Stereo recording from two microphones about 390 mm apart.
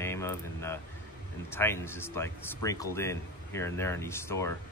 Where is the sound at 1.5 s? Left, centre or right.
Centre.